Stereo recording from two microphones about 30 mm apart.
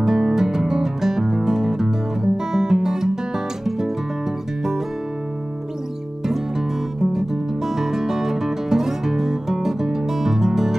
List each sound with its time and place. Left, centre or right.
0.0 s music: centre
7.0 s music: centre